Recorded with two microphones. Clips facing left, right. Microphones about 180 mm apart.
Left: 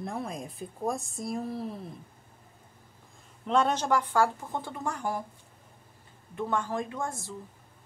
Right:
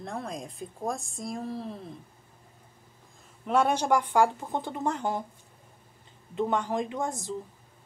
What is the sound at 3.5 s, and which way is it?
Speech, 10° right (ahead or behind).